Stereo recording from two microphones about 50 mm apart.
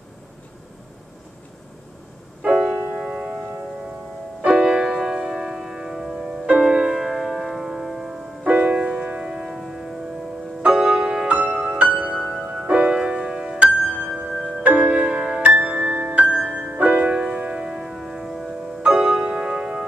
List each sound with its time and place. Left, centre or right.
2.9 s music: right
4.9 s church bell: centre
6.1 s music: right
8.5 s music: right
11.2 s music: right
18.8 s music: right
19.0 s music: centre